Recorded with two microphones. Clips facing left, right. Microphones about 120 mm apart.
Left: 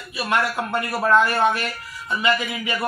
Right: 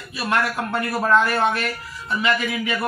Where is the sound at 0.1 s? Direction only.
15° left (ahead or behind).